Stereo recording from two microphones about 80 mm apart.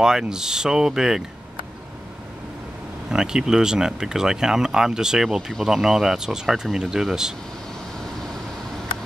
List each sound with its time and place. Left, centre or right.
0.0 s speech: centre
3.1 s speech: centre